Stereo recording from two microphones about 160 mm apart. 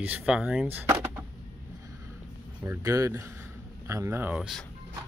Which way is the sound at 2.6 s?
20° right (ahead or behind).